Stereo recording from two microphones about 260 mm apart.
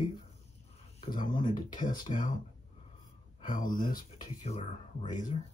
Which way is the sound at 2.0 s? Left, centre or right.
Left.